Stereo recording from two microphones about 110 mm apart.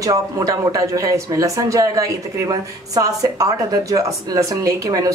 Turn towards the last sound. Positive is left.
turn(degrees=-30)  # may be behind; listen again after turning